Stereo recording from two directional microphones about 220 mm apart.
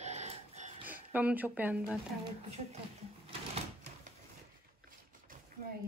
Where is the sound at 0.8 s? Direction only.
5° right (ahead or behind).